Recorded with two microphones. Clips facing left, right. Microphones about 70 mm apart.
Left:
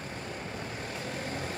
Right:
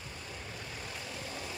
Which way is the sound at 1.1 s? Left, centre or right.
Left.